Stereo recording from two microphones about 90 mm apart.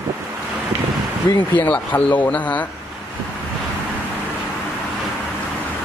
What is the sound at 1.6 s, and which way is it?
Speech, 20° left (ahead or behind).